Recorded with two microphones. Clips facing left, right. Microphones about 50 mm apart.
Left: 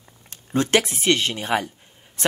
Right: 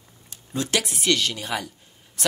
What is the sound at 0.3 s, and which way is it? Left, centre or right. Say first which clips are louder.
Speech: left 6 dB; left.